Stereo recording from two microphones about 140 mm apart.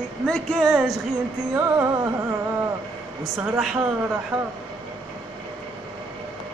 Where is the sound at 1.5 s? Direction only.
15° right (ahead or behind).